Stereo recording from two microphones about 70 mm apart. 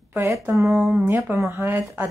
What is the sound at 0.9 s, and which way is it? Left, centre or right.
Speech, right.